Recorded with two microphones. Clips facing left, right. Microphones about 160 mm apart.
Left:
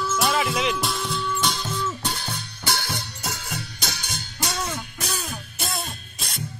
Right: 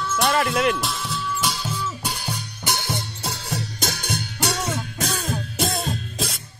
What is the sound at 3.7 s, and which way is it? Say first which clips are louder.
Music: right 6 dB; 50° right (ahead or behind).